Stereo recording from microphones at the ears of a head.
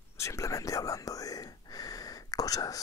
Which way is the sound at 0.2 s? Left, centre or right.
Left.